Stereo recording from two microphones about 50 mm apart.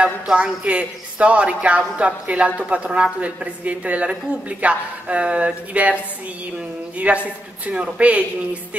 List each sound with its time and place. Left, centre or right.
0.0 s speech: right
7.0 s a man's voice: right